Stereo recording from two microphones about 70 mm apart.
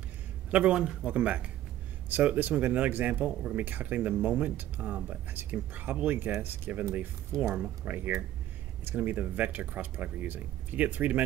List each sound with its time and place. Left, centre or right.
0.5 s a man's voice: centre